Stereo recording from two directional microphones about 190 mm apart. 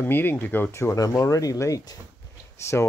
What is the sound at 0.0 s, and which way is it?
Speech, 10° left (ahead or behind).